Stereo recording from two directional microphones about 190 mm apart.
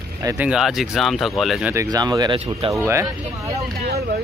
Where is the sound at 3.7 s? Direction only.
55° right (ahead or behind).